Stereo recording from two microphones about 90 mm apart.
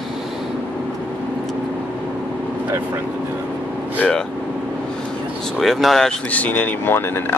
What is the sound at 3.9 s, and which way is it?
Vehicle, 15° left (ahead or behind).